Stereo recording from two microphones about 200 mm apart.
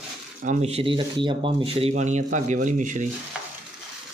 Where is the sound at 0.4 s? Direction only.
35° right (ahead or behind).